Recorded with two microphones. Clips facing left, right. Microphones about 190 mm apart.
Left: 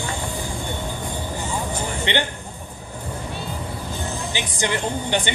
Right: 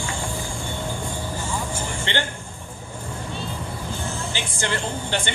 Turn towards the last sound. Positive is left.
turn(degrees=15)  # may be behind; listen again after turning